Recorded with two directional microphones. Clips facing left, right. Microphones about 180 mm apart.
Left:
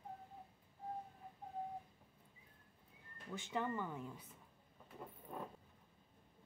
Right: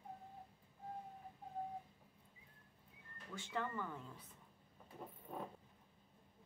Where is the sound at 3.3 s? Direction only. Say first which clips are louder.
Left 3 dB; 15° left (ahead or behind).